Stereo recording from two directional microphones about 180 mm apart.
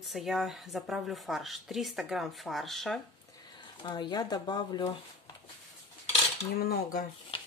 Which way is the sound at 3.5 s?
25° left (ahead or behind).